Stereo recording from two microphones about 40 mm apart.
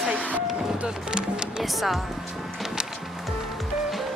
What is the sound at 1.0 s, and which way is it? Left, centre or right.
Speech, right.